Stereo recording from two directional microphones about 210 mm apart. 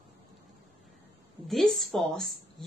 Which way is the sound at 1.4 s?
Centre (ahead or behind).